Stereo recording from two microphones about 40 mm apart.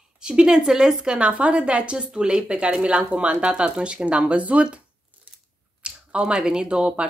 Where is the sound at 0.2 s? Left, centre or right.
Right.